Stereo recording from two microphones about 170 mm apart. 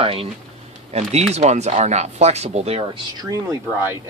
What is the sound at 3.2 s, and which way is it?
Speech, 20° right (ahead or behind).